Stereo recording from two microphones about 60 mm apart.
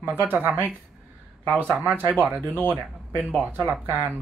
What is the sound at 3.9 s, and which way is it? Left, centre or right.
Speech, right.